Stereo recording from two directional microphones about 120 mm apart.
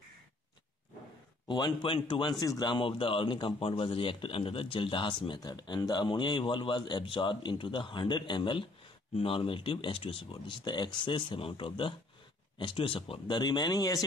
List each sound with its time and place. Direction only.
1.5 s a man's voice: 40° left (ahead or behind)
2.4 s speech: 30° left (ahead or behind)
2.7 s a man's voice: 45° left (ahead or behind)